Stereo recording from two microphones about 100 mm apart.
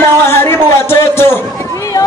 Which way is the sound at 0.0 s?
25° left (ahead or behind).